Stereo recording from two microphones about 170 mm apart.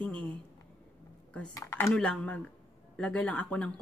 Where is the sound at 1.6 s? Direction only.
15° left (ahead or behind).